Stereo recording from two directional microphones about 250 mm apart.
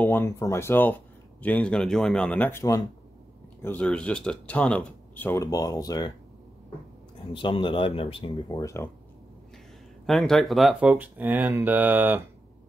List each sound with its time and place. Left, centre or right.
0.0 s speech: centre
7.3 s speech: centre
10.0 s speech: centre